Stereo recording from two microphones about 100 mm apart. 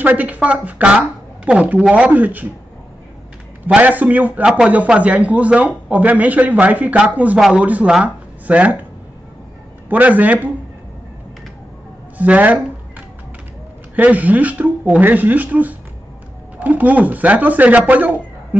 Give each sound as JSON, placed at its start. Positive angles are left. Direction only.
{"t": 0.0, "sound": "speech", "side_deg": -15}
{"t": 3.6, "sound": "speech", "side_deg": -15}
{"t": 9.8, "sound": "speech", "side_deg": -15}
{"t": 12.2, "sound": "speech", "side_deg": -15}
{"t": 13.9, "sound": "speech", "side_deg": -15}